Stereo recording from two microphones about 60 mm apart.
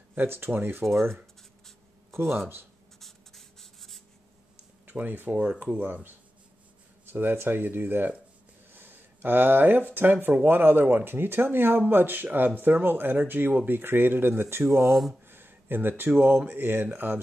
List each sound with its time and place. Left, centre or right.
0.1 s speech: right
2.1 s speech: right
3.0 s writing: centre
4.8 s speech: right
14.9 s speech: centre
15.2 s a sound: right
16.3 s speech: right